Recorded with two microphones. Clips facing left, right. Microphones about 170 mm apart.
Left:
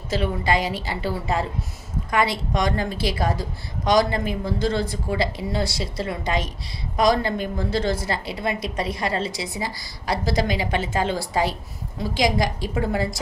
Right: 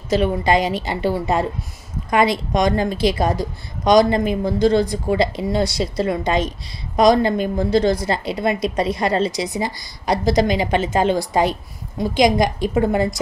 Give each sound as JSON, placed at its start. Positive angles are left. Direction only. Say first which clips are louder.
{"t": 0.1, "sound": "a woman's voice", "louder": "right 6 dB", "side_deg": -20}